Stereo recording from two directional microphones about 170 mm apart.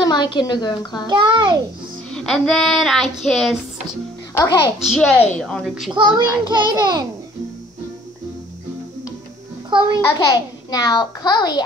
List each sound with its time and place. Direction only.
0.0 s a child's voice: 25° left (ahead or behind)
1.0 s a child's voice: 25° right (ahead or behind)
2.0 s child singing: 5° left (ahead or behind)
4.7 s child singing: centre (ahead or behind)
5.1 s a woman's voice: 10° left (ahead or behind)
5.4 s child singing: centre (ahead or behind)
6.1 s a child's voice: 25° right (ahead or behind)
9.7 s a child's voice: 30° right (ahead or behind)
10.1 s a child's voice: 25° left (ahead or behind)